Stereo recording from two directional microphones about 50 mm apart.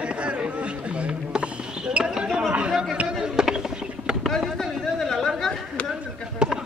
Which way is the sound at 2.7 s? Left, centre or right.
Centre.